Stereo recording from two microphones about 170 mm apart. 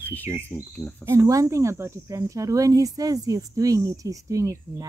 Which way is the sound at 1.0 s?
15° right (ahead or behind).